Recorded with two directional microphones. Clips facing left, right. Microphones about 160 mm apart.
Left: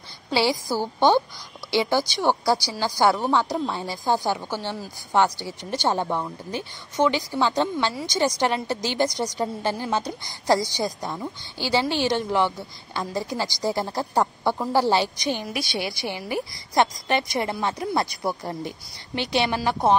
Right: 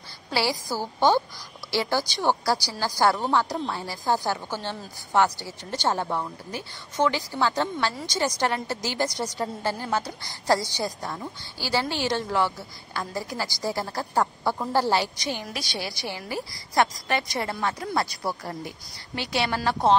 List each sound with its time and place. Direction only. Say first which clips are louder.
0.3 s a woman's voice: left 4 dB; 20° left (ahead or behind)